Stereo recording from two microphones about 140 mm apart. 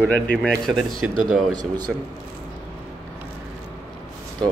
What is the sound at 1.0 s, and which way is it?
A man's voice, 10° right (ahead or behind).